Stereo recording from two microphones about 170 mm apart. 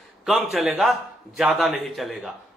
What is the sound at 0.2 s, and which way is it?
Speech, centre (ahead or behind).